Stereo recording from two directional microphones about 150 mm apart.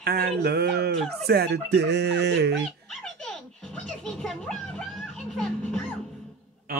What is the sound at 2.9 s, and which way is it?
Music, centre (ahead or behind).